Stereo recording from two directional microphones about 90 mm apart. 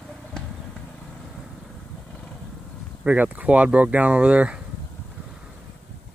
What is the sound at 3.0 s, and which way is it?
Speech, 15° right (ahead or behind).